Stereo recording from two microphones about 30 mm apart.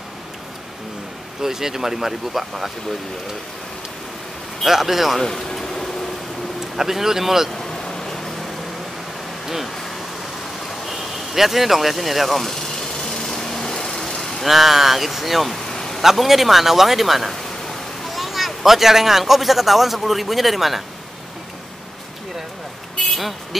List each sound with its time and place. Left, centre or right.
1.4 s speech: centre
4.6 s speech: centre
5.2 s vehicle: centre
6.8 s speech: centre
7.8 s vehicle: centre
10.9 s speech: centre
12.7 s vehicle: centre
14.4 s speech: centre
15.5 s vehicle: centre
16.0 s speech: centre
23.1 s speech: centre